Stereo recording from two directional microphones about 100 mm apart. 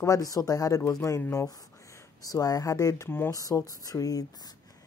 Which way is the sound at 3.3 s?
35° left (ahead or behind).